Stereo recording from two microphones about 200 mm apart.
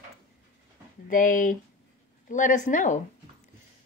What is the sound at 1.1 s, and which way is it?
Speech, 40° left (ahead or behind).